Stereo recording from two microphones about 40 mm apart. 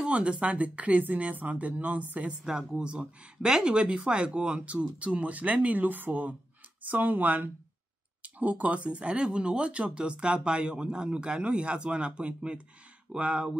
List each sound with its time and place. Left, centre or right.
0.0 s speech: right
2.4 s speech: centre